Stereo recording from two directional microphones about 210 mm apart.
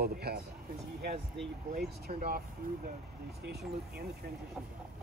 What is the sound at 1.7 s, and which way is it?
Speech, 45° right (ahead or behind).